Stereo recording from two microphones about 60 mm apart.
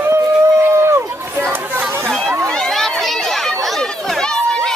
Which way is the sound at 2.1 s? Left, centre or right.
Centre.